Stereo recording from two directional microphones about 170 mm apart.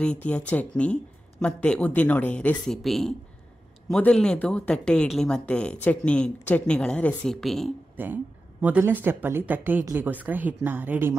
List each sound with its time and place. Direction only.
0.0 s speech: 5° left (ahead or behind)
7.9 s speech: 10° right (ahead or behind)